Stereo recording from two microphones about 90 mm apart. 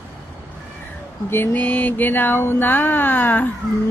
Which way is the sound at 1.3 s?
20° left (ahead or behind).